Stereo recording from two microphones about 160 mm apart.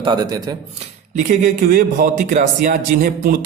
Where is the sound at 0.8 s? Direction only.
55° right (ahead or behind).